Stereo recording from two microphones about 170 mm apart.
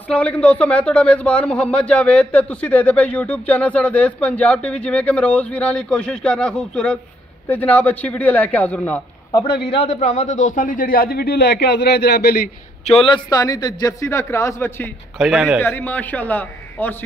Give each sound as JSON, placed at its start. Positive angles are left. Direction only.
{"t": 0.1, "sound": "speech", "side_deg": 10}
{"t": 9.7, "sound": "a man's voice", "side_deg": 30}
{"t": 9.9, "sound": "a man's voice", "side_deg": 45}
{"t": 12.8, "sound": "a man's voice", "side_deg": 35}
{"t": 15.1, "sound": "a man's voice", "side_deg": -5}
{"t": 15.6, "sound": "speech", "side_deg": 10}